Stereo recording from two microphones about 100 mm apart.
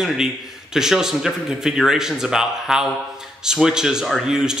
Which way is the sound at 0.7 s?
5° right (ahead or behind).